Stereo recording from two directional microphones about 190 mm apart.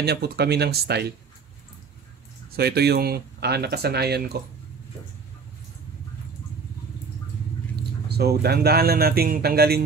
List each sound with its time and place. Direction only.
0.0 s speech: 60° right (ahead or behind)
2.5 s speech: 55° right (ahead or behind)
8.1 s speech: 55° right (ahead or behind)